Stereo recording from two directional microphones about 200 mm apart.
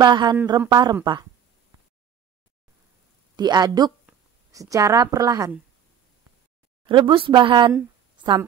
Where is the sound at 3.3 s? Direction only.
20° right (ahead or behind).